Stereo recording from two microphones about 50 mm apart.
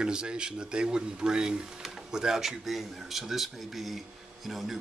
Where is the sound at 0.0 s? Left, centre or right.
Centre.